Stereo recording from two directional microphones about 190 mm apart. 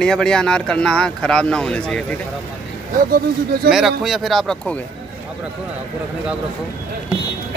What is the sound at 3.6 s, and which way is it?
Speech, 55° right (ahead or behind).